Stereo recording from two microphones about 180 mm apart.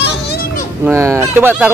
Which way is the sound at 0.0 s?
65° left (ahead or behind).